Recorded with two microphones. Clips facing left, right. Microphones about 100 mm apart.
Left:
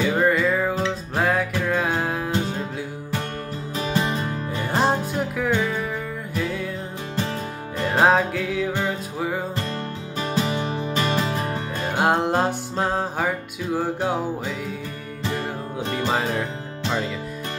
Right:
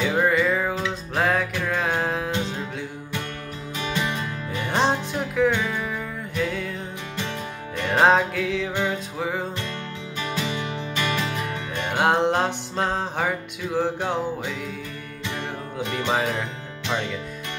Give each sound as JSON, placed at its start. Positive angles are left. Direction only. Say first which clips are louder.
{"t": 0.0, "sound": "music", "louder": "left 1 dB", "side_deg": 0}
{"t": 3.7, "sound": "music", "louder": "left 3 dB", "side_deg": 35}
{"t": 4.6, "sound": "music", "louder": "left 1 dB", "side_deg": 5}
{"t": 7.9, "sound": "music", "louder": "even", "side_deg": 0}
{"t": 10.1, "sound": "music", "louder": "left 4 dB", "side_deg": 35}
{"t": 11.9, "sound": "music", "louder": "even", "side_deg": 0}
{"t": 15.2, "sound": "music", "louder": "left 4 dB", "side_deg": 40}
{"t": 16.1, "sound": "music", "louder": "even", "side_deg": 0}